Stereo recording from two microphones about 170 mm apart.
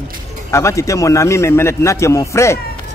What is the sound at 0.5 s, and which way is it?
Speech, 20° left (ahead or behind).